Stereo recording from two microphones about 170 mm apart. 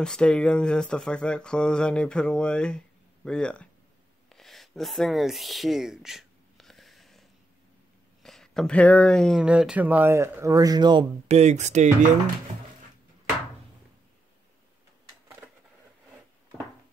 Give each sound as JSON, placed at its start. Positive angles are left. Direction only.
{"t": 0.0, "sound": "speech", "side_deg": 5}
{"t": 4.3, "sound": "a sound", "side_deg": 0}
{"t": 8.2, "sound": "speech", "side_deg": 5}
{"t": 11.2, "sound": "speech", "side_deg": -40}